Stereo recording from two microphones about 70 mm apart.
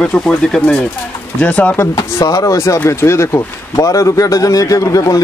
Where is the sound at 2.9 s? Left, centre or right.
Left.